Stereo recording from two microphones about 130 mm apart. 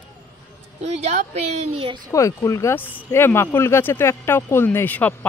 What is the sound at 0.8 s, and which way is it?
A woman's voice, 55° right (ahead or behind).